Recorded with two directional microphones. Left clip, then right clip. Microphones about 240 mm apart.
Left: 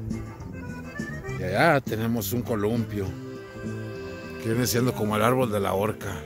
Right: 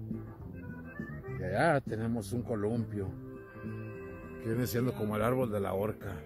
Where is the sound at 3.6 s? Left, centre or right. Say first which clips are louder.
Left 8 dB; centre.